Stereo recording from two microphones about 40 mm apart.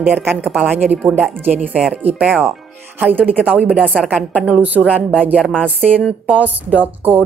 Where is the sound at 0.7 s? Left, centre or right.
Right.